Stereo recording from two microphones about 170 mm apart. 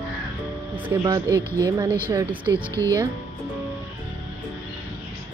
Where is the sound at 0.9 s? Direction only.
20° right (ahead or behind).